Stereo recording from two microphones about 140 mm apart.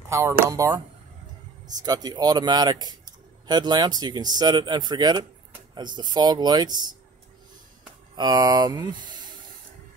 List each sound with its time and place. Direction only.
0.1 s a man's voice: 20° right (ahead or behind)
8.2 s a man's voice: 30° right (ahead or behind)